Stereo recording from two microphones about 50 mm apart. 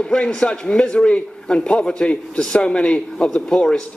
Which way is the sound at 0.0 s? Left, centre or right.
Centre.